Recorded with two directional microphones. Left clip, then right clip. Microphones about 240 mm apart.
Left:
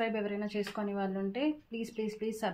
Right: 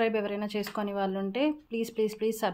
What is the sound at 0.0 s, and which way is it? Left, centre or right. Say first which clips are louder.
Speech: right 5 dB; right.